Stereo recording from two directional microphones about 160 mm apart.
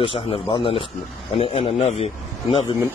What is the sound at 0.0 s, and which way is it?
Speech, 35° left (ahead or behind).